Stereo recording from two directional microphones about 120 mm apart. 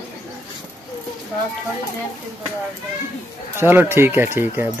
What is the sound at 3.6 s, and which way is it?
Speech, 20° right (ahead or behind).